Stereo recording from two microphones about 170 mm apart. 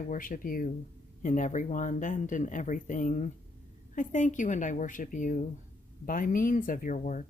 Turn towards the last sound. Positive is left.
turn(degrees=50)  # may be behind; listen again after turning